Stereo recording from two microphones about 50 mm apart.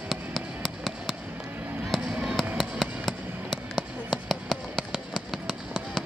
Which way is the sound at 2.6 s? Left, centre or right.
Centre.